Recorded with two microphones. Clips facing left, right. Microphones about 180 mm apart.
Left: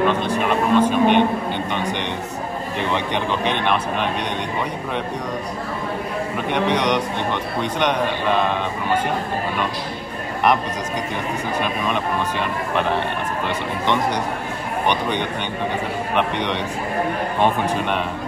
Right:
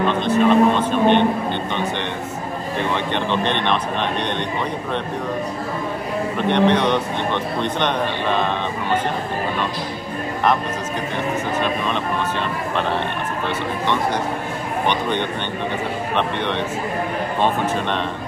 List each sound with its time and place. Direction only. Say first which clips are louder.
0.2 s speech: right 6 dB; 10° left (ahead or behind)
2.9 s speech: even; 10° left (ahead or behind)
6.3 s speech: right 4 dB; 10° left (ahead or behind)
14.9 s speech: even; 15° left (ahead or behind)